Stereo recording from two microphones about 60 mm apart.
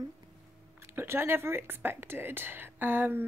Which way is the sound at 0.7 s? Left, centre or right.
Right.